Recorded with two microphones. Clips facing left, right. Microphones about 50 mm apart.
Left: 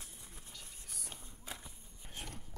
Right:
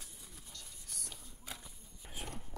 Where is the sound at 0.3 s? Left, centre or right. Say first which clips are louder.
Even; centre.